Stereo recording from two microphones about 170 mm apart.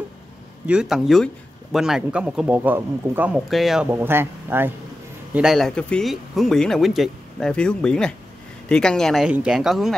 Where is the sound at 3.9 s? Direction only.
15° right (ahead or behind).